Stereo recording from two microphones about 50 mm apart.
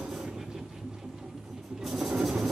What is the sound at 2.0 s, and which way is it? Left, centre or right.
Train, centre.